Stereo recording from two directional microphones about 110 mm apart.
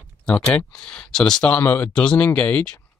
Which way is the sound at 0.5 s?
10° left (ahead or behind).